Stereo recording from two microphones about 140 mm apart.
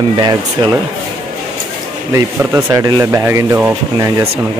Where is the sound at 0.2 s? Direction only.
30° right (ahead or behind).